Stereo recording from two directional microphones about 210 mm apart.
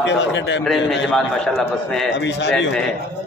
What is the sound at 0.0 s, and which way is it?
Speech, 55° left (ahead or behind).